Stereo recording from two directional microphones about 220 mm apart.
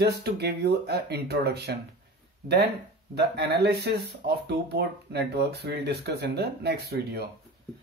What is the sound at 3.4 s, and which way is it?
Speech, 50° right (ahead or behind).